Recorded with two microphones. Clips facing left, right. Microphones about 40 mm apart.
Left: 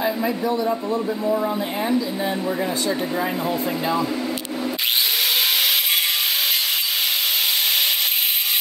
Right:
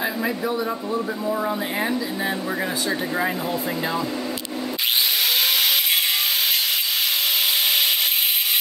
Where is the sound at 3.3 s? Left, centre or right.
Centre.